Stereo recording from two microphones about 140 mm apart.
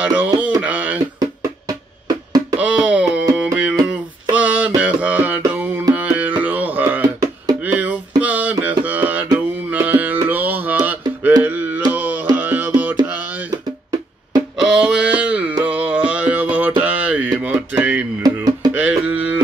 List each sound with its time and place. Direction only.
0.0 s mantra: 10° right (ahead or behind)
1.2 s music: 25° right (ahead or behind)
2.6 s a sound: 10° right (ahead or behind)
3.4 s music: 10° right (ahead or behind)
7.6 s a sound: 10° right (ahead or behind)
8.2 s music: 10° right (ahead or behind)
8.8 s mantra: 10° right (ahead or behind)
9.7 s music: 10° right (ahead or behind)
14.6 s wail: 5° right (ahead or behind)
15.6 s mantra: 10° right (ahead or behind)
18.2 s music: 25° right (ahead or behind)
18.7 s music: 10° right (ahead or behind)